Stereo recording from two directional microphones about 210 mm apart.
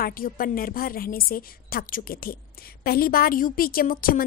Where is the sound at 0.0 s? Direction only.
45° left (ahead or behind).